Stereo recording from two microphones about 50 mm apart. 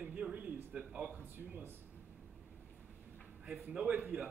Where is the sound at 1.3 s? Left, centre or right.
Right.